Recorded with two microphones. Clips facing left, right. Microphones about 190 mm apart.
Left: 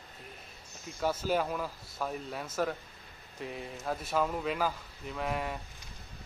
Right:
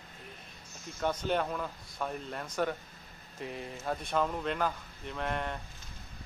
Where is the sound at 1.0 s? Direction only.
5° left (ahead or behind).